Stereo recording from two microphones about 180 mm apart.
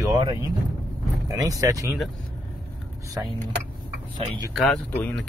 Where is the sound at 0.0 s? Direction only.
25° right (ahead or behind).